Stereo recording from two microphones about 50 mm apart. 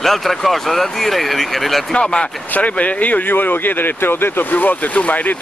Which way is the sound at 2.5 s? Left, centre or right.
Left.